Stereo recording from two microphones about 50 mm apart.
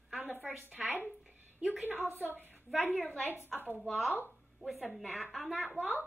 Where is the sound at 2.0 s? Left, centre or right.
Right.